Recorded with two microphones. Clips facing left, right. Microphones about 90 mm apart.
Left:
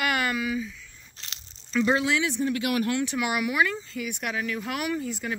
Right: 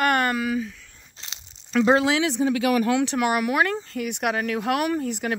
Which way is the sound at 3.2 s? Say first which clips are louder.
Right 4 dB; 50° right (ahead or behind).